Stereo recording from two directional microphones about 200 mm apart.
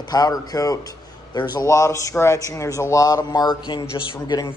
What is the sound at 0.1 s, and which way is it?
A man's voice, 20° left (ahead or behind).